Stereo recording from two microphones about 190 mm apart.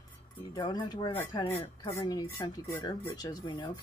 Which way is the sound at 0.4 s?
20° left (ahead or behind).